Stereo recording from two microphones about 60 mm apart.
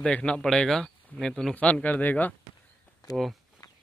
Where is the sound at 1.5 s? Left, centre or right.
Left.